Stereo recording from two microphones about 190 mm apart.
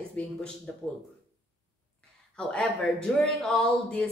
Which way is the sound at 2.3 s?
5° left (ahead or behind).